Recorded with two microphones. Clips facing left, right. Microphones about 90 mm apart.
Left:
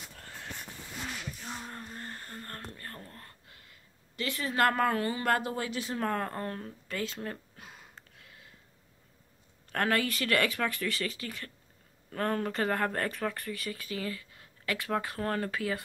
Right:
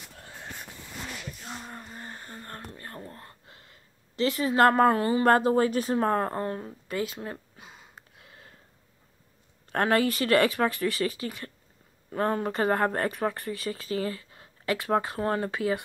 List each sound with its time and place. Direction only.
1.4 s a sound: centre (ahead or behind); by 3.7 s 30° right (ahead or behind)
4.2 s speech: 20° right (ahead or behind)
4.6 s speech: 30° right (ahead or behind)
5.9 s speech: 25° right (ahead or behind); by 8.0 s 5° right (ahead or behind)
9.7 s speech: 25° right (ahead or behind)